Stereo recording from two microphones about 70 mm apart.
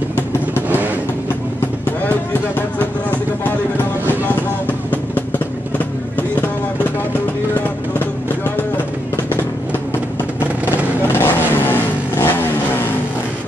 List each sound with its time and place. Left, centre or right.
2.8 s a sound: left
4.6 s vehicle: left
11.1 s vehicle: left